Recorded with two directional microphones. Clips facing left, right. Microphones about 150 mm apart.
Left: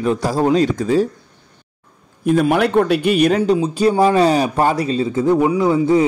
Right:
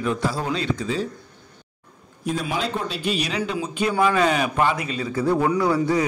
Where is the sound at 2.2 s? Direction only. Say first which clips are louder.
Left 11 dB; 55° left (ahead or behind).